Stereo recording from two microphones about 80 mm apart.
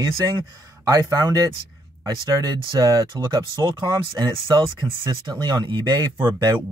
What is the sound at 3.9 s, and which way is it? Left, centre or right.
Speech, right.